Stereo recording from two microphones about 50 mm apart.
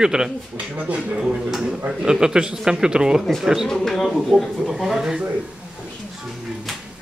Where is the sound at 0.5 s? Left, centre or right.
Right.